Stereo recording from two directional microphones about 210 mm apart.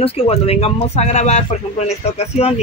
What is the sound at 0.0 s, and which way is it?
Speech, 30° left (ahead or behind).